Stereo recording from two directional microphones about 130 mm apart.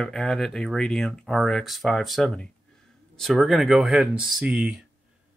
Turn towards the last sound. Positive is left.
turn(degrees=-5)  # may be behind; listen again after turning